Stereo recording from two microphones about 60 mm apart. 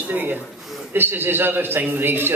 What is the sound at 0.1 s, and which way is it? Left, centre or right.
A man's voice, right.